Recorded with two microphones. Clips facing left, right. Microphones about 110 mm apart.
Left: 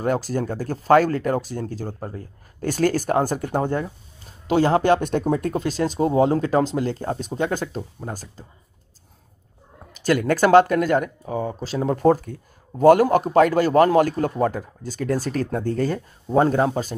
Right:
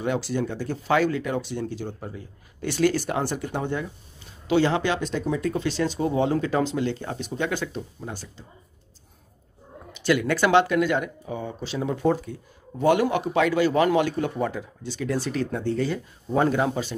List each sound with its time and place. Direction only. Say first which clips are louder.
0.0 s speech: left 3 dB; 45° left (ahead or behind)
9.9 s speech: left 3 dB; 40° left (ahead or behind)